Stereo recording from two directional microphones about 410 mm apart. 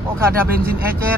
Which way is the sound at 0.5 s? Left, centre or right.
Right.